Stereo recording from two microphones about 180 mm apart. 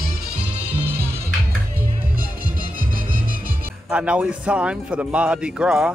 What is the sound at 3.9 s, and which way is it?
Speech, 5° right (ahead or behind).